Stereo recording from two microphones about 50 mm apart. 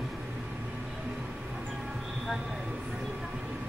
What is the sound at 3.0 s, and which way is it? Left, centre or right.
Train, centre.